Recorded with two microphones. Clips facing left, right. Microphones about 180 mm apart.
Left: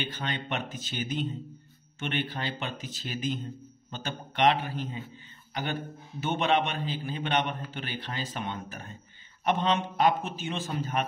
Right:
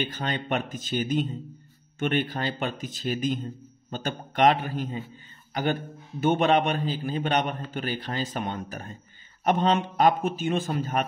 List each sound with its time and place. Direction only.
0.0 s speech: 45° right (ahead or behind)